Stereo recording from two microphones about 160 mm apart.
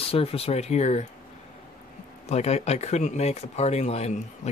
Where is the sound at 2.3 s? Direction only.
40° left (ahead or behind).